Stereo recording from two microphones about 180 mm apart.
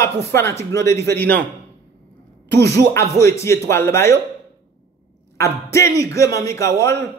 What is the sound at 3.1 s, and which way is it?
A man's voice, 15° left (ahead or behind).